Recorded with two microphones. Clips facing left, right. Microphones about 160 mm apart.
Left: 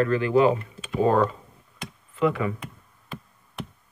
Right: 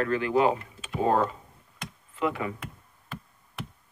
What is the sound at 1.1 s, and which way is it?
Speech, 55° left (ahead or behind).